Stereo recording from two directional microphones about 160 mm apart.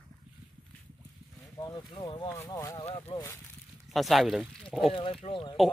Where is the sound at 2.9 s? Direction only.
35° left (ahead or behind).